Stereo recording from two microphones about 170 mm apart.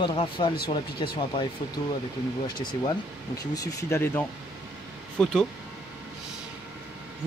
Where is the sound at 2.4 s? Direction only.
25° left (ahead or behind).